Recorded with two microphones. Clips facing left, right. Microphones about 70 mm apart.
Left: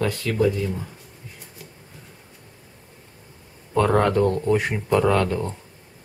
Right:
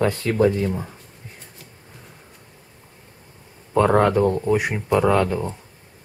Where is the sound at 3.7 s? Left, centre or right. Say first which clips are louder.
Right 2 dB; centre.